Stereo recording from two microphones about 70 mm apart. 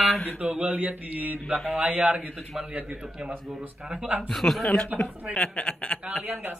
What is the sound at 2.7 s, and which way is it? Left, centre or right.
Speech, right.